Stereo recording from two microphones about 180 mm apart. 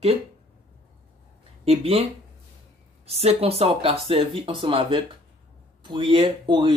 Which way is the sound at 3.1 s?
35° right (ahead or behind).